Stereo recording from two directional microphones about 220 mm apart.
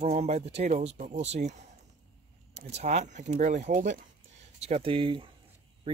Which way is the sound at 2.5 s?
30° right (ahead or behind).